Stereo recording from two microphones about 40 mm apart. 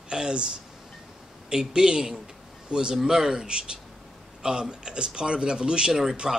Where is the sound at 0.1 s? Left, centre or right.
Right.